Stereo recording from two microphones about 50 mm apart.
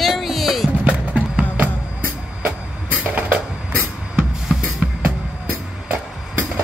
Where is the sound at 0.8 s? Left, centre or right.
Right.